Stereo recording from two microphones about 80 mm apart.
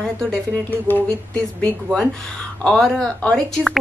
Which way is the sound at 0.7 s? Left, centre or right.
Left.